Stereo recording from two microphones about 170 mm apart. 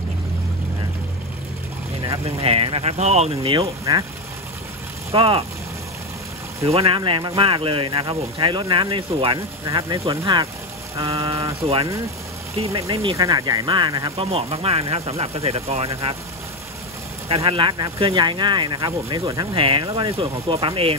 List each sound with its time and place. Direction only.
2.0 s speech: 35° right (ahead or behind)
5.1 s speech: 35° right (ahead or behind)
6.7 s speech: 35° right (ahead or behind)
12.9 s speech: 35° right (ahead or behind)
13.2 s speech: 20° right (ahead or behind)
14.1 s speech: 35° right (ahead or behind)
17.3 s speech: 30° right (ahead or behind)